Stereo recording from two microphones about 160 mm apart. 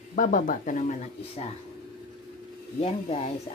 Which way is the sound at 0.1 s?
55° left (ahead or behind).